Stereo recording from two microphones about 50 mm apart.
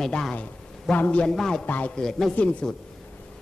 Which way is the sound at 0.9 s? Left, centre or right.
Left.